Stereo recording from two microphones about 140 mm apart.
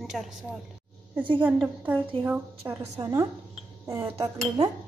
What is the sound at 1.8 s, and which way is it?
A woman's voice, 15° right (ahead or behind).